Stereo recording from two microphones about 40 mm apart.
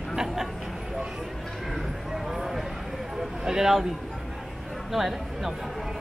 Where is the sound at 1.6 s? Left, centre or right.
Centre.